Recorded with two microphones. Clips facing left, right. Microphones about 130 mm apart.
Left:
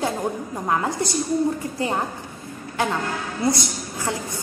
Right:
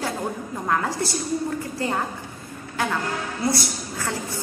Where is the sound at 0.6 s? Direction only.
20° left (ahead or behind).